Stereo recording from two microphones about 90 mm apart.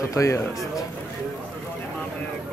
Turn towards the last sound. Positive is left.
turn(degrees=35)  # may be behind; listen again after turning